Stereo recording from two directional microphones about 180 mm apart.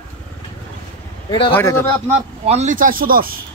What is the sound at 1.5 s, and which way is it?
Speech, 10° left (ahead or behind).